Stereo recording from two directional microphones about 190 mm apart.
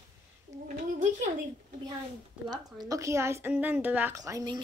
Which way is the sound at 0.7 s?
45° right (ahead or behind).